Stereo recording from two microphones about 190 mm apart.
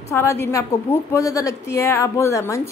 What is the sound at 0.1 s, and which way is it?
A woman's voice, 15° left (ahead or behind).